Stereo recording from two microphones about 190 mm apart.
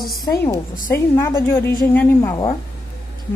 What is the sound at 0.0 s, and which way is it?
Speech, centre (ahead or behind).